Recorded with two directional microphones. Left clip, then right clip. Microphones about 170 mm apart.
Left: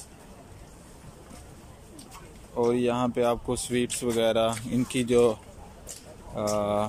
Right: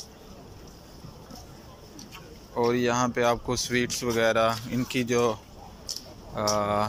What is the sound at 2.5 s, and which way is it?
Speech, 15° left (ahead or behind).